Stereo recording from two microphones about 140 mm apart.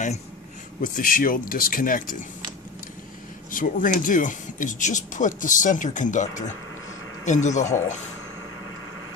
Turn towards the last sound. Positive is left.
turn(degrees=55)  # may be behind; listen again after turning